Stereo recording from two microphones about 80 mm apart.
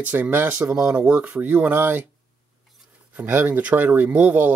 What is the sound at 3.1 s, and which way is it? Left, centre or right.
Speech, right.